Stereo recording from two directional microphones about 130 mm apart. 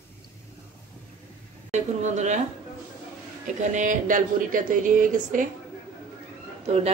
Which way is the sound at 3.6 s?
70° right (ahead or behind).